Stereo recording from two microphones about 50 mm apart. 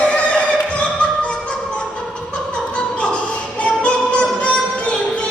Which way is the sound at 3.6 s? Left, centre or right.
Left.